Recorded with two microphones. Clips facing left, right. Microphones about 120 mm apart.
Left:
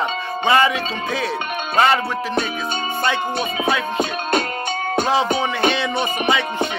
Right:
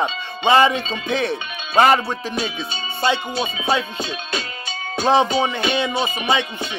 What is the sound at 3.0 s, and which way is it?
Wind chime, 25° right (ahead or behind).